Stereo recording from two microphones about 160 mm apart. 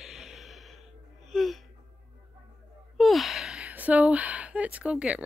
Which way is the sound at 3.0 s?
Centre (ahead or behind).